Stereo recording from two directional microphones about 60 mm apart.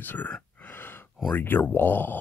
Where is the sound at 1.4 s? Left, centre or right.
Left.